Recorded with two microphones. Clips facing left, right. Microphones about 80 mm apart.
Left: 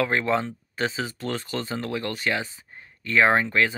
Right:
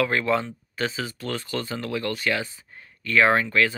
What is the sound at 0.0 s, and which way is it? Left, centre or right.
Speech, left.